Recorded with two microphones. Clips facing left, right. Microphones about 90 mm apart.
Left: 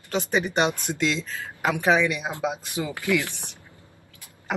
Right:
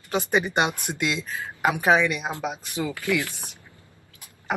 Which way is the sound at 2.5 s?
20° left (ahead or behind).